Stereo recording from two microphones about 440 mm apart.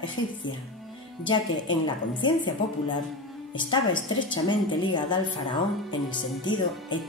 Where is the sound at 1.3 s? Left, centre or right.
Centre.